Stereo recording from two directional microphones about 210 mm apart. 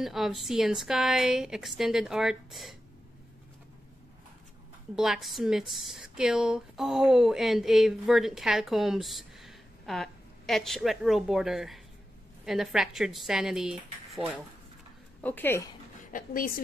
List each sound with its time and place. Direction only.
0.0 s speech: centre (ahead or behind)
4.9 s speech: centre (ahead or behind)
15.2 s speech: 10° left (ahead or behind)
16.1 s a woman's voice: 40° left (ahead or behind)